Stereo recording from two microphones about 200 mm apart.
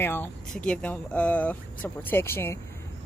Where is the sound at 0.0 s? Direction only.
10° left (ahead or behind).